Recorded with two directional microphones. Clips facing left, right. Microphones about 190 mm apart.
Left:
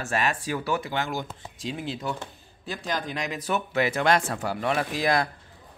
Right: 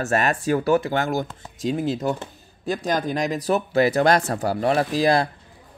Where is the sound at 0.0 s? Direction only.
45° right (ahead or behind).